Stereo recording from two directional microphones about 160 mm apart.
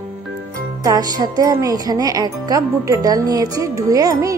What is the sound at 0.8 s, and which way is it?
Speech, 25° right (ahead or behind).